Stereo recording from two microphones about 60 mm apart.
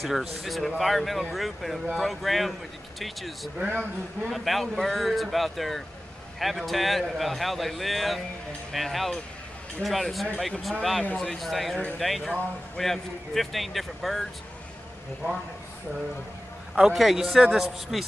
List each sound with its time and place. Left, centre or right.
0.0 s a man's voice: centre
3.6 s speech: right
4.3 s a man's voice: centre
16.7 s a man's voice: centre